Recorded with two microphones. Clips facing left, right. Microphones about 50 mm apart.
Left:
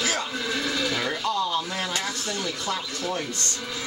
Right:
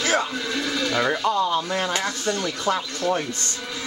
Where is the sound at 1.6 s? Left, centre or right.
Centre.